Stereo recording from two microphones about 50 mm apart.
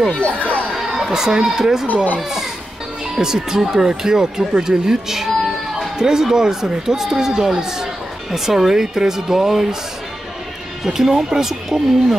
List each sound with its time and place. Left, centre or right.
0.2 s speech: left
0.7 s speech: centre
3.2 s speech: centre
10.8 s speech: centre